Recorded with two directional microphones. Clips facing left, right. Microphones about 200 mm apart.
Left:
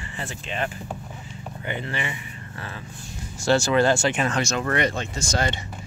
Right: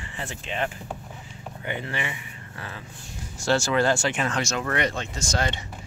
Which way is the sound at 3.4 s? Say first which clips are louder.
Left 3 dB; 15° left (ahead or behind).